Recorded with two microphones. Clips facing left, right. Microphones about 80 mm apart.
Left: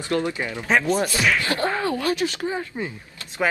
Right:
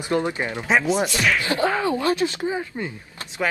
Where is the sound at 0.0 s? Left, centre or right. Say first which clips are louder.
Right 1 dB; right.